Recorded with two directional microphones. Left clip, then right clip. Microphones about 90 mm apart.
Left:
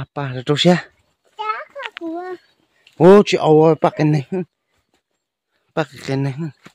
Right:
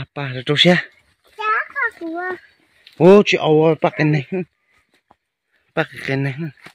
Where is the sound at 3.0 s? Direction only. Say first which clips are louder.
Left 1 dB; 25° left (ahead or behind).